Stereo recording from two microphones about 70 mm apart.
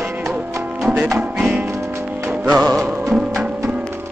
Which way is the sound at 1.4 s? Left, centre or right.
Centre.